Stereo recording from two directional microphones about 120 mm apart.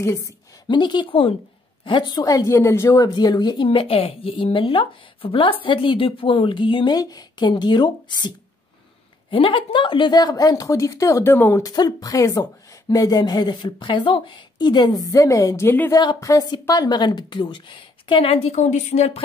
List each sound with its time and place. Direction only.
0.7 s a woman's voice: 40° left (ahead or behind)
9.3 s a woman's voice: 45° left (ahead or behind); by 11.6 s 20° left (ahead or behind)
11.6 s a woman's voice: 35° left (ahead or behind)
15.9 s speech: 35° left (ahead or behind); by 19.2 s 65° left (ahead or behind)